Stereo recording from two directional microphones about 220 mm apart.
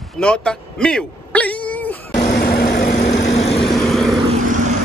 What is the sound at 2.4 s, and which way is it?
Vehicle, 45° left (ahead or behind).